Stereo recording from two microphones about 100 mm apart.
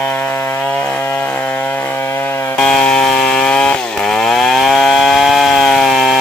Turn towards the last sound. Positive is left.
turn(degrees=0)  # may be behind; listen again after turning